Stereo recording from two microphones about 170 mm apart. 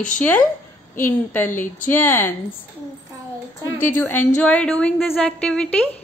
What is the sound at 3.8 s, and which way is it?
A woman's voice, 10° left (ahead or behind).